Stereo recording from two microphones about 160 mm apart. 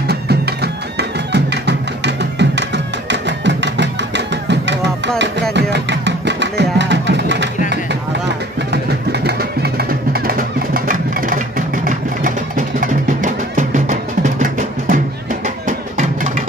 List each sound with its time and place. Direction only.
0.0 s music: 90° right
7.7 s vehicle: 90° right; by 15.0 s 55° right (ahead or behind)
15.4 s music: 50° right (ahead or behind)